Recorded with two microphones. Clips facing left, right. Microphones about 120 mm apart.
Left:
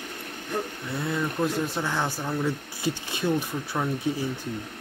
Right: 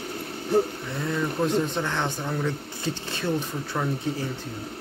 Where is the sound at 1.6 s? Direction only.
10° left (ahead or behind).